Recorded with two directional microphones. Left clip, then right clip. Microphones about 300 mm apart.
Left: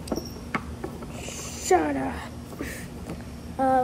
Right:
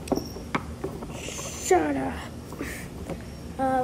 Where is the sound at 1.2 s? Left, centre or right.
Centre.